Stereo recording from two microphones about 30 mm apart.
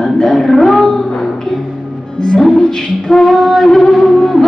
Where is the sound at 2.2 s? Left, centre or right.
Left.